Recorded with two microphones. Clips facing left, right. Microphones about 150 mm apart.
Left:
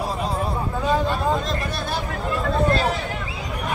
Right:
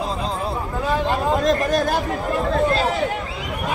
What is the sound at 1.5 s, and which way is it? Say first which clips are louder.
Speech: right 8 dB; 40° right (ahead or behind).